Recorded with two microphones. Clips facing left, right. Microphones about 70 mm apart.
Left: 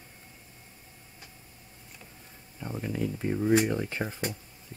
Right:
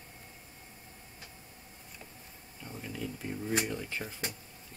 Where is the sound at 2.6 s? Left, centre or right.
Left.